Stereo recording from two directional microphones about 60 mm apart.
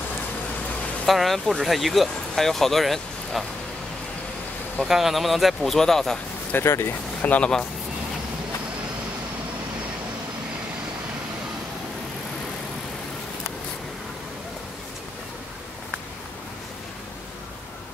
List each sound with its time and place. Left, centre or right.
1.0 s speech: centre
4.8 s speech: centre
6.5 s speech: left
7.2 s speech: left